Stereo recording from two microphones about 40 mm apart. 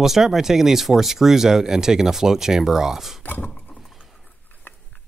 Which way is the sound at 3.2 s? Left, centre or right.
Left.